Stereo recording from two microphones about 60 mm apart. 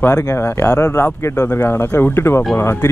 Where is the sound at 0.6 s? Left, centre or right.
Left.